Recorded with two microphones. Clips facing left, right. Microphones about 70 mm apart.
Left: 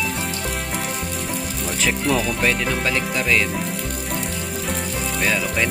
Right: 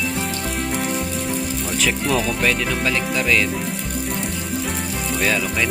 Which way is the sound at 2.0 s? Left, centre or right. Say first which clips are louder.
Even; centre.